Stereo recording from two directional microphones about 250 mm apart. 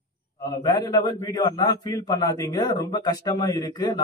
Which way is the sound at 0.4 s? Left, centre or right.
Centre.